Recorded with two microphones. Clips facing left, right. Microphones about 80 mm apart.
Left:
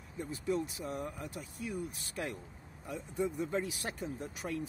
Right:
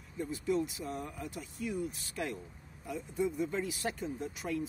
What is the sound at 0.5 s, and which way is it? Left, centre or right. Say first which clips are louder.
Speech: right 1 dB; left.